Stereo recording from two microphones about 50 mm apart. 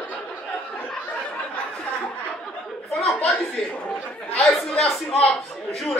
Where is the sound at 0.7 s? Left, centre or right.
Left.